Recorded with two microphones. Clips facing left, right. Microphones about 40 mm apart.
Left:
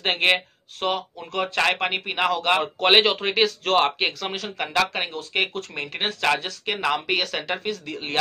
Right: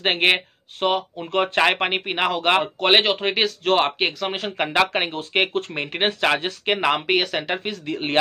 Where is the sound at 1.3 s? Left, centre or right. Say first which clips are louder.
Right 5 dB; right.